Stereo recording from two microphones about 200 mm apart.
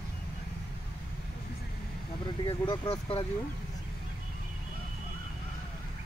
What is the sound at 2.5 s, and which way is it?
Speech, 25° left (ahead or behind).